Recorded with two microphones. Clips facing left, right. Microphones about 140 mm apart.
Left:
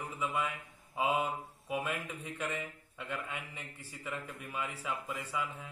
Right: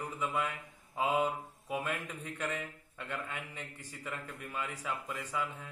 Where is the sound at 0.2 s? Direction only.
5° left (ahead or behind).